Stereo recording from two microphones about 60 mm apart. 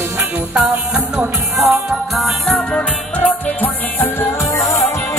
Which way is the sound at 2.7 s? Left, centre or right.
Left.